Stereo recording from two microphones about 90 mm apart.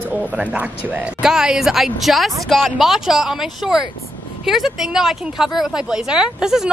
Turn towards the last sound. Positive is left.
turn(degrees=-5)  # may be behind; listen again after turning